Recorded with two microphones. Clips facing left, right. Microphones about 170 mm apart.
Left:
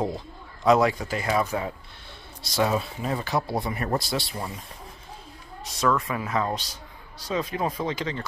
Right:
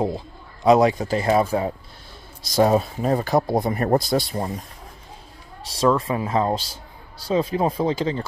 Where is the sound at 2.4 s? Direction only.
40° right (ahead or behind).